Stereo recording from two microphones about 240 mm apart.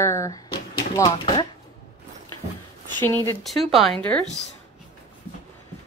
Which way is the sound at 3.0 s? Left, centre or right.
Centre.